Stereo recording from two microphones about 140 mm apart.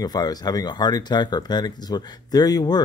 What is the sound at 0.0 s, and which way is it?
Speech, 30° left (ahead or behind).